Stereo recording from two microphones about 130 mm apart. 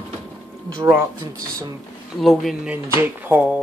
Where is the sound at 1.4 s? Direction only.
25° right (ahead or behind).